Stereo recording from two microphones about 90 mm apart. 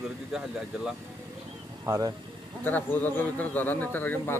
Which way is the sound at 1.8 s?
30° right (ahead or behind).